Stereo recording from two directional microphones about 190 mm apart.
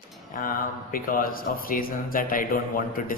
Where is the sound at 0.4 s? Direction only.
50° left (ahead or behind).